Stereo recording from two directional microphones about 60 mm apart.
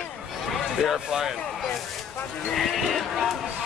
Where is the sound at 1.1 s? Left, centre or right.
Centre.